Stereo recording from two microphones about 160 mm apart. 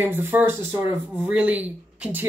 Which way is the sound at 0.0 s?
15° right (ahead or behind).